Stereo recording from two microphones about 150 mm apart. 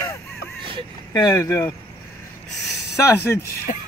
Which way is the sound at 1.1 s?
25° left (ahead or behind).